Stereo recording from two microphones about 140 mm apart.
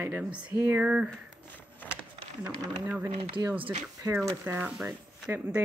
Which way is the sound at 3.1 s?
40° right (ahead or behind).